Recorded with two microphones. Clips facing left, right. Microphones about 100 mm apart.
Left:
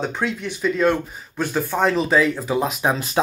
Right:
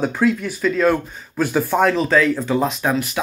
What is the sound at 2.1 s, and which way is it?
Speech, 10° left (ahead or behind).